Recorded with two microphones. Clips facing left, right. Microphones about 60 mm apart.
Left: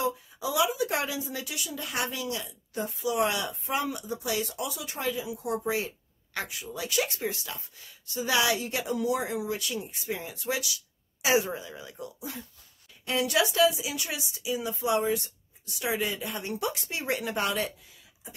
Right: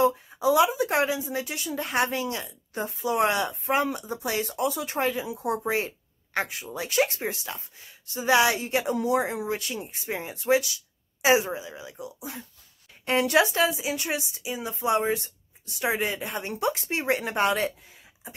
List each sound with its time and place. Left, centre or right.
0.0 s speech: right
11.2 s speech: right
13.0 s speech: right